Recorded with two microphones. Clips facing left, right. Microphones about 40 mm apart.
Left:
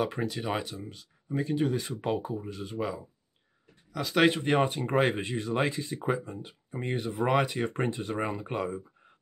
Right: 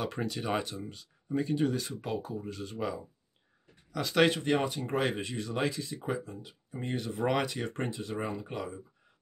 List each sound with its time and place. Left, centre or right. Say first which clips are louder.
0.0 s speech: left 3 dB; centre
1.8 s speech: left 4 dB; left
2.3 s speech: left 3 dB; centre
4.5 s speech: left 3 dB; left
7.2 s speech: left 3 dB; centre
7.8 s speech: left 3 dB; left